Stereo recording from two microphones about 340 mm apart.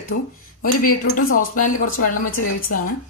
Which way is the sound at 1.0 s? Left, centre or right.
Left.